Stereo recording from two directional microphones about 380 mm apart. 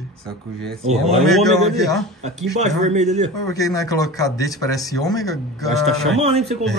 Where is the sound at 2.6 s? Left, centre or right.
Centre.